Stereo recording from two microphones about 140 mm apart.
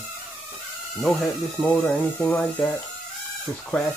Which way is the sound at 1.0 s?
5° left (ahead or behind).